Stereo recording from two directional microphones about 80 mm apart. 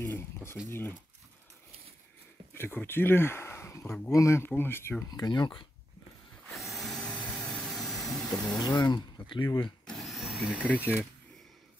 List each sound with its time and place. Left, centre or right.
0.0 s speech: left
2.5 s speech: left
5.1 s speech: left
6.5 s vacuum cleaner: centre
7.2 s vehicle: centre
8.4 s speech: left
9.8 s a sound: centre
10.6 s speech: left